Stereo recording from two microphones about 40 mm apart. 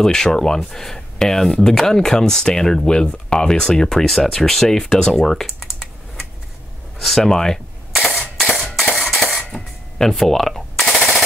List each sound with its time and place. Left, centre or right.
0.0 s speech: centre
5.6 s typing: centre
7.0 s speech: centre
8.4 s music: centre
9.1 s a sound: centre
9.5 s machine gun: centre